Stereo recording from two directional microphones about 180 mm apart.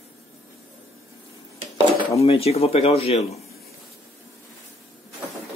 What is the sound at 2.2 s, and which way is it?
Speech, 35° left (ahead or behind).